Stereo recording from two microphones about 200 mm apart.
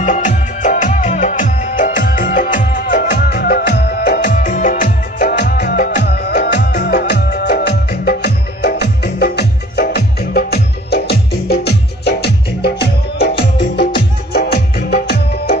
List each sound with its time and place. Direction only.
0.0 s music: 40° left (ahead or behind)